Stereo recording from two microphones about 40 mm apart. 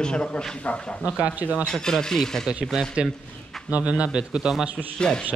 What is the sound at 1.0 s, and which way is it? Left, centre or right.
Speech, right.